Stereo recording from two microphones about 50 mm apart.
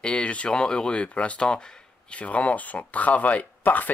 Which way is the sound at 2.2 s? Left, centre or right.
Left.